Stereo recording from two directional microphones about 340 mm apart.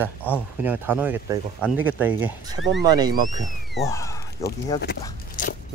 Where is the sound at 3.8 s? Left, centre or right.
Centre.